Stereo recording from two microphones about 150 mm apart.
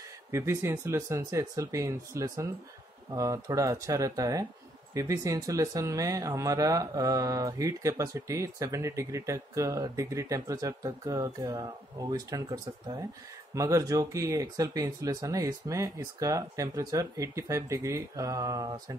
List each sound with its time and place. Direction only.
0.3 s speech: 20° right (ahead or behind)